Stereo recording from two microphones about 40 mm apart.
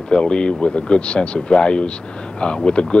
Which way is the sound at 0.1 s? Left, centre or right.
Left.